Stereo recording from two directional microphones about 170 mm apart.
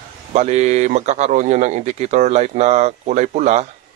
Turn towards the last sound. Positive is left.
turn(degrees=-40)  # may be behind; listen again after turning